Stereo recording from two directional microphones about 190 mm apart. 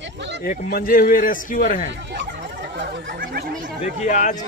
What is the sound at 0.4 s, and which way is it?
Speech, 50° left (ahead or behind).